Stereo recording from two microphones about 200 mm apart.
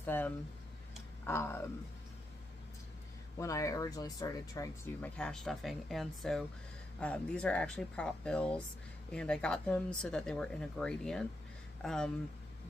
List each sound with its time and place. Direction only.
0.0 s speech: 10° left (ahead or behind)
3.3 s speech: 15° left (ahead or behind)
5.1 s speech: 5° left (ahead or behind)